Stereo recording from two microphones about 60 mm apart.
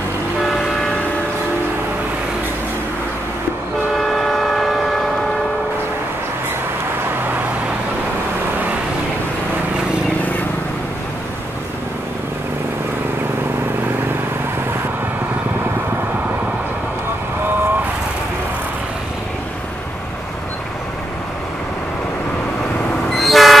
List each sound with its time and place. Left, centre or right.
4.0 s train: centre
23.1 s vehicle: centre